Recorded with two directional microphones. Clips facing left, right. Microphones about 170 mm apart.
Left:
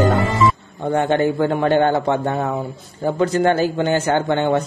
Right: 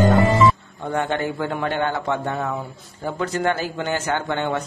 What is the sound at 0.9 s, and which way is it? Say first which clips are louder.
A man's voice: left 6 dB; 25° left (ahead or behind).